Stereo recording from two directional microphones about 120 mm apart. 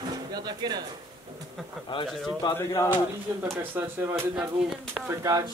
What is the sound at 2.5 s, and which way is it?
Speech, 20° left (ahead or behind).